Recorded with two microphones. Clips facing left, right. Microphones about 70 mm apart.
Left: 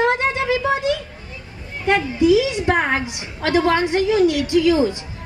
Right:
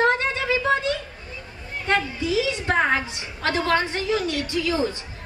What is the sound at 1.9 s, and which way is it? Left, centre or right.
A woman's voice, centre.